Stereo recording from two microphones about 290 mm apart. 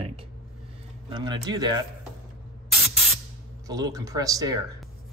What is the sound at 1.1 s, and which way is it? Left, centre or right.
Speech, centre.